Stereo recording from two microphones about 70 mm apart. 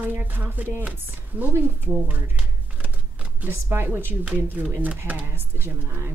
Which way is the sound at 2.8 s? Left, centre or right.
Right.